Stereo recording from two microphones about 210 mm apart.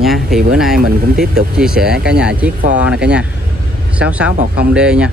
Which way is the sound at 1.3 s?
5° right (ahead or behind).